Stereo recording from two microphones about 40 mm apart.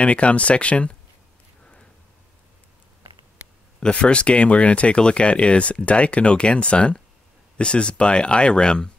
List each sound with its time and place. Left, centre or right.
0.0 s speech: left
4.0 s speech: left